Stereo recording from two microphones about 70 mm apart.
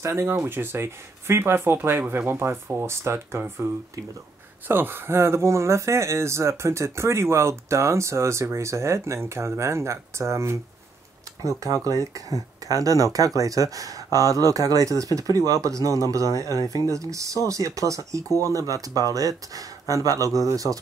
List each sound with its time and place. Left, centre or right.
0.0 s speech: right
4.6 s speech: right
11.4 s speech: right